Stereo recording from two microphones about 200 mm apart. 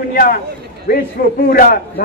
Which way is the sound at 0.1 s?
45° left (ahead or behind).